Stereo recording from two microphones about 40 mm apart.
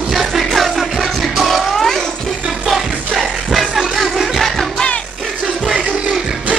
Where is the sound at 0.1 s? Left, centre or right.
Centre.